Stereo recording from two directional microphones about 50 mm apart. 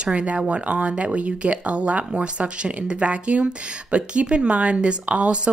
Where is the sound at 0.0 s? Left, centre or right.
Right.